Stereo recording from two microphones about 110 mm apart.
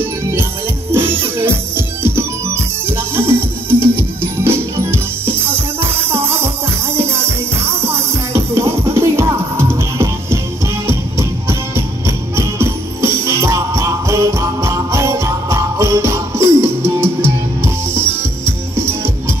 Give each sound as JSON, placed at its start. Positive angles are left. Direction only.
{"t": 0.9, "sound": "music", "side_deg": -20}
{"t": 7.6, "sound": "music", "side_deg": -20}